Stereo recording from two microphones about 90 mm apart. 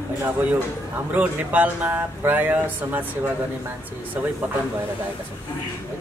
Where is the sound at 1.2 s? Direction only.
20° right (ahead or behind).